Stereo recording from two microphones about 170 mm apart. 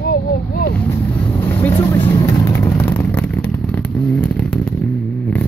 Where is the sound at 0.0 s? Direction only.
70° left (ahead or behind).